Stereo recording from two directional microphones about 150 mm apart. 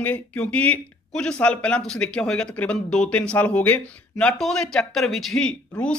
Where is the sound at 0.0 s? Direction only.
10° left (ahead or behind).